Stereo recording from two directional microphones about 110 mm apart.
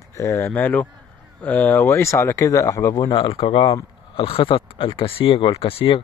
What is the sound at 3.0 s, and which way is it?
Speech, 45° left (ahead or behind).